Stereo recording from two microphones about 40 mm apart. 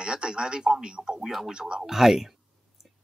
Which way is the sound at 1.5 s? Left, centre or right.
Right.